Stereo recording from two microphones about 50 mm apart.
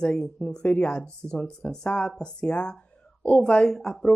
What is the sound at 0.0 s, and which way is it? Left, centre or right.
Speech, left.